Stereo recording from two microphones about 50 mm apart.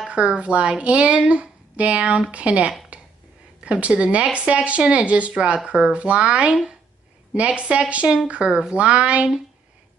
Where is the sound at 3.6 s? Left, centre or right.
Right.